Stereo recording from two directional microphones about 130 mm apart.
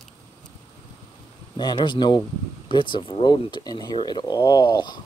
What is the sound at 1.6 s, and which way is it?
Speech, 35° left (ahead or behind).